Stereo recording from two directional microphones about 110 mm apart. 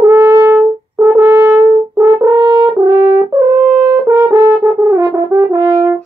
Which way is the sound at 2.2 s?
35° right (ahead or behind).